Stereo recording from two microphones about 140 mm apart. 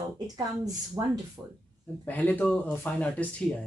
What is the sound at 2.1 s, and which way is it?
Speech, 10° left (ahead or behind).